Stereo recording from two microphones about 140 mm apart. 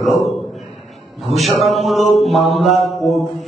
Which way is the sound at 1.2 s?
Centre (ahead or behind).